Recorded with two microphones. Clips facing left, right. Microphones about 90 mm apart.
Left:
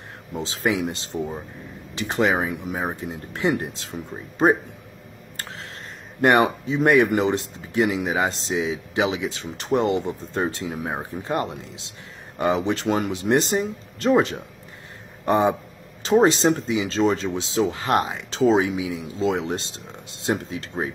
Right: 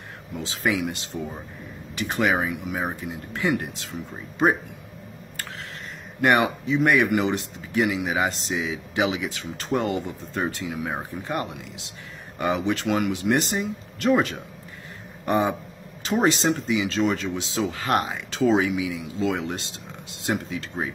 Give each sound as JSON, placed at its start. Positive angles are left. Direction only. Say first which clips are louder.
{"t": 0.4, "sound": "speech", "louder": "left 2 dB", "side_deg": 25}
{"t": 6.2, "sound": "speech", "louder": "left 2 dB", "side_deg": 35}